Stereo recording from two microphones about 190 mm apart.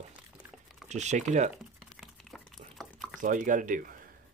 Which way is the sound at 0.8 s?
40° right (ahead or behind).